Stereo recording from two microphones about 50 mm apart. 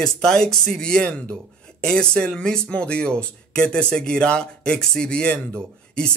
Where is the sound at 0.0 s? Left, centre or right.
Centre.